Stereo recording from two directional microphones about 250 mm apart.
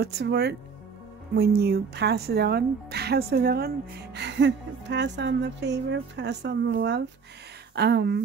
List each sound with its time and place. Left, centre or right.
0.0 s a woman's voice: right